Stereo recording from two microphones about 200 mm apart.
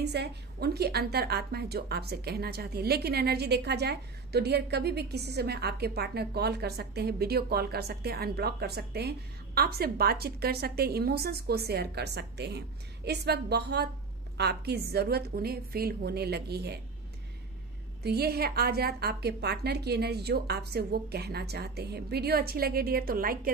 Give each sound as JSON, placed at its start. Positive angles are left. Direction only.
{"t": 0.0, "sound": "a woman's voice", "side_deg": -55}
{"t": 18.0, "sound": "a woman's voice", "side_deg": -50}